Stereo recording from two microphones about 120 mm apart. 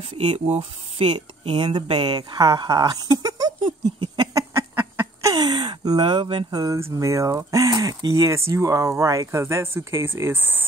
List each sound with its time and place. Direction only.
0.0 s speech: 55° right (ahead or behind)
1.7 s a sound: 40° right (ahead or behind); by 5.3 s 20° right (ahead or behind)
5.3 s speech: 35° right (ahead or behind)
6.6 s speech: 25° right (ahead or behind)